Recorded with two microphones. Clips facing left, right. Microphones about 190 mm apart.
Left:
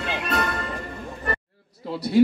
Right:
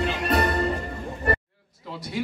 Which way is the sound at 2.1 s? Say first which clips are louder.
Left 14 dB; 40° left (ahead or behind).